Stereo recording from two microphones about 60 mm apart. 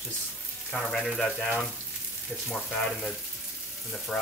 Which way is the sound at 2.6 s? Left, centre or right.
Centre.